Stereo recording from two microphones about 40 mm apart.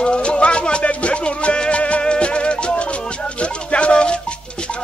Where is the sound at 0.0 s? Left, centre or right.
Left.